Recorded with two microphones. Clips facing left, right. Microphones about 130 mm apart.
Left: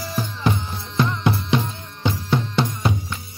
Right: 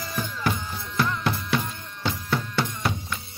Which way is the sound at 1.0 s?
20° left (ahead or behind).